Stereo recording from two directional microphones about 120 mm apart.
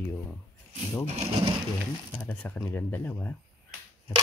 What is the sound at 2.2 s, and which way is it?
Speech, 10° left (ahead or behind).